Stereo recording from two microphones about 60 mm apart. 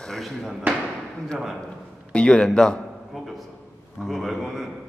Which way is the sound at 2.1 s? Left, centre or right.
Centre.